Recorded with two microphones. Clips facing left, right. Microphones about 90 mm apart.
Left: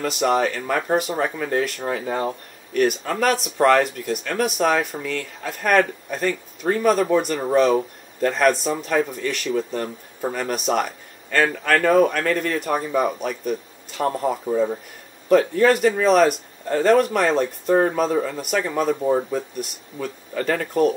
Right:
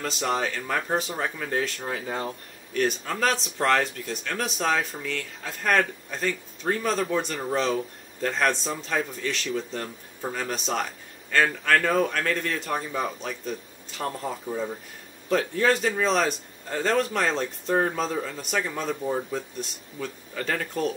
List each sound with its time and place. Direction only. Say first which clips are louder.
0.0 s speech: left 7 dB; 5° left (ahead or behind)
14.5 s speech: left 9 dB; 30° left (ahead or behind)
15.2 s speech: left 7 dB; 5° left (ahead or behind)
18.9 s speech: left 8 dB; 35° left (ahead or behind)
19.3 s speech: left 5 dB; 5° left (ahead or behind)